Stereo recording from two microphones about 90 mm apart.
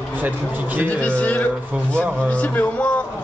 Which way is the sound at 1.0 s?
15° left (ahead or behind).